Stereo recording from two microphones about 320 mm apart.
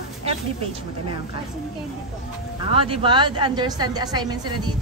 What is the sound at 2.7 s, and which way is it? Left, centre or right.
A woman's voice, centre.